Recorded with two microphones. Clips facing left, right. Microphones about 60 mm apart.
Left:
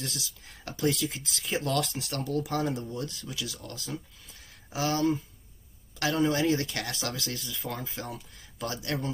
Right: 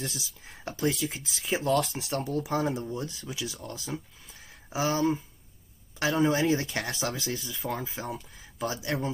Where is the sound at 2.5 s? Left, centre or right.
Centre.